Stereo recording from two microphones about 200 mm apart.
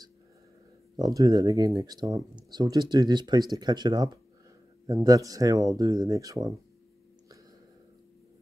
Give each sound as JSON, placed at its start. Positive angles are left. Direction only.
{"t": 0.9, "sound": "speech", "side_deg": -20}